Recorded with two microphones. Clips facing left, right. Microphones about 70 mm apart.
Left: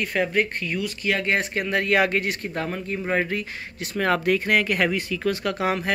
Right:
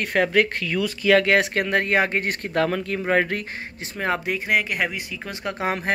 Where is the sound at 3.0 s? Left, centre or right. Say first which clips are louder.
Right 3 dB; right.